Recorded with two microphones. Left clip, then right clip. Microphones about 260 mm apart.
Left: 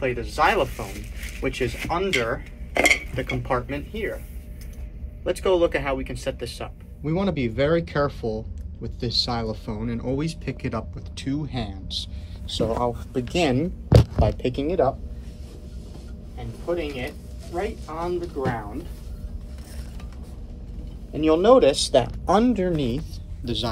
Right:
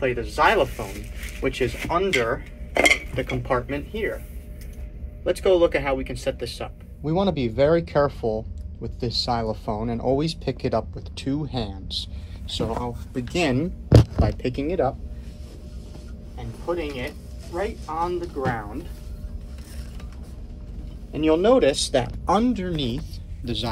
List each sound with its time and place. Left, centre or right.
0.0 s speech: centre
5.2 s speech: centre
10.3 s speech: left
11.4 s speech: centre
12.4 s speech: centre
16.3 s speech: centre
21.1 s speech: centre
22.7 s speech: centre
23.4 s speech: centre